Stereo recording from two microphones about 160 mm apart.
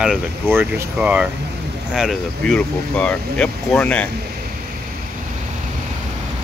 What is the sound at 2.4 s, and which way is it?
Speech, 10° left (ahead or behind).